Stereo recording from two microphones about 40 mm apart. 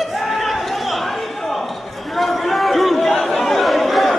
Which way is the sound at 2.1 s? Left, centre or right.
Centre.